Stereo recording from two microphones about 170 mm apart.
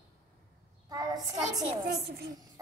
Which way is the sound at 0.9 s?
25° right (ahead or behind).